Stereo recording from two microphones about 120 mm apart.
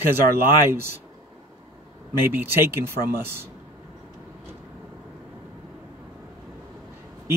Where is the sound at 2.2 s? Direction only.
20° right (ahead or behind).